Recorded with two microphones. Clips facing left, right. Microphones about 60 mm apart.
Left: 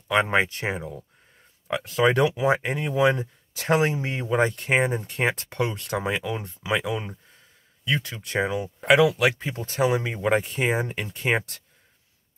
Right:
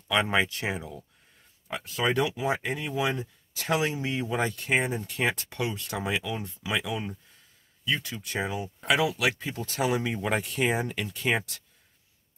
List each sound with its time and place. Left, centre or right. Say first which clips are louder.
0.1 s speech: left 4 dB; left
2.1 s speech: left 6 dB; left
7.8 s speech: left 3 dB; left